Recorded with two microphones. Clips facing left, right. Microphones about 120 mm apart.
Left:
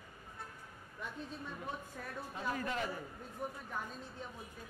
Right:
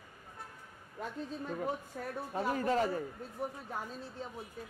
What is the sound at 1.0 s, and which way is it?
Speech, 40° right (ahead or behind).